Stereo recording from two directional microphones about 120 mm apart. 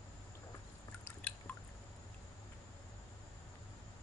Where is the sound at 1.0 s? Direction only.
10° left (ahead or behind).